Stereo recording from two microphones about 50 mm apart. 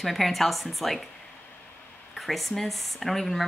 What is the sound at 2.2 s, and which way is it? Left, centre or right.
Speech, centre.